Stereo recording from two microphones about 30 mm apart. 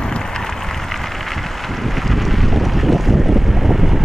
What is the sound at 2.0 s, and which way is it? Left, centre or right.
Boat, centre.